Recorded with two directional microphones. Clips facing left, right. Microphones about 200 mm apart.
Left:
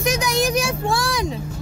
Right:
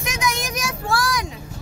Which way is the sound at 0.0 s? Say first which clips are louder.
Left 6 dB; 35° left (ahead or behind).